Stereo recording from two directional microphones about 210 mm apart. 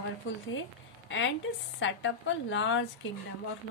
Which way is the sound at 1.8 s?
60° left (ahead or behind).